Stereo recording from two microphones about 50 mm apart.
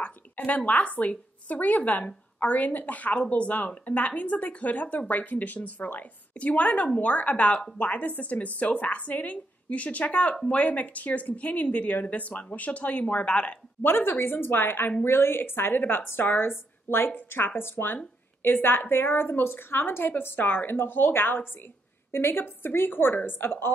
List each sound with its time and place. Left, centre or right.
0.0 s a woman's voice: left
13.8 s a woman's voice: left